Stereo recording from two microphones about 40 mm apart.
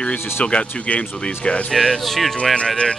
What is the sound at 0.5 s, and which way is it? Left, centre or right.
Speech, left.